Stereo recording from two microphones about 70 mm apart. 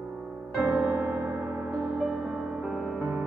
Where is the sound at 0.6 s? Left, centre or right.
Centre.